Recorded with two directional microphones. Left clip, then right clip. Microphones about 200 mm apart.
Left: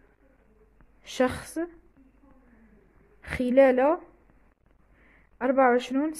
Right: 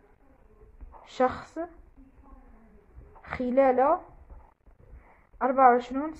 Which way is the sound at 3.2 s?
90° left.